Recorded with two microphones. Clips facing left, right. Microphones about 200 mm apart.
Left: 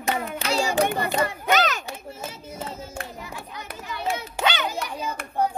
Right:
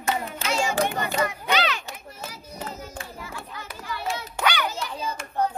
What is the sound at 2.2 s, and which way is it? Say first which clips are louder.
Music: left 1 dB; 25° left (ahead or behind).